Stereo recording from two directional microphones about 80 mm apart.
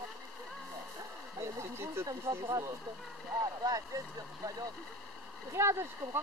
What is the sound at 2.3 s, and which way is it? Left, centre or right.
Speech, right.